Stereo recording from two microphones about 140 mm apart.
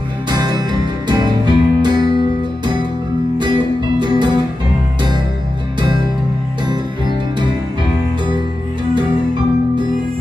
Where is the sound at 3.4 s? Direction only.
30° right (ahead or behind).